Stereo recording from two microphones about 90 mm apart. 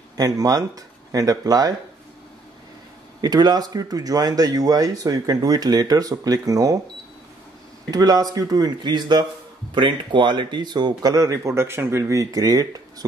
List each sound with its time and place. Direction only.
0.2 s speech: 45° right (ahead or behind)
3.2 s speech: 50° right (ahead or behind)
7.9 s speech: 45° right (ahead or behind)